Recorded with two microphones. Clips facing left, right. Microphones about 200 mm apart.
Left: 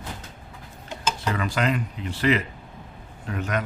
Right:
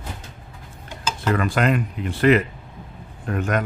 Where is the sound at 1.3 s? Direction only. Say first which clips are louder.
Right 5 dB; 55° right (ahead or behind).